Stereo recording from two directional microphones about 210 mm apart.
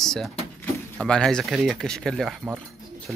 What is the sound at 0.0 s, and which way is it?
Speech, centre (ahead or behind).